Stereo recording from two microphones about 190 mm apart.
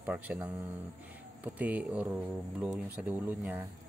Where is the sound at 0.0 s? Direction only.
10° right (ahead or behind).